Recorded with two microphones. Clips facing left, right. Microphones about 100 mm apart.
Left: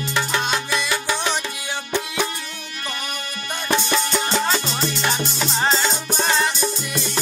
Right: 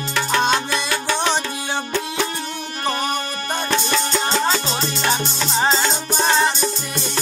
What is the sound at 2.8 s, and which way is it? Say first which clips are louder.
Music: right 9 dB; 35° right (ahead or behind).